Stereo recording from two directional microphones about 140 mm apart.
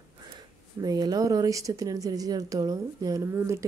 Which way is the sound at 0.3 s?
30° right (ahead or behind).